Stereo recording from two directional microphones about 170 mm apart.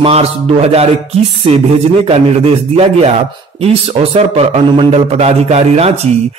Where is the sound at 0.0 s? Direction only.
35° right (ahead or behind).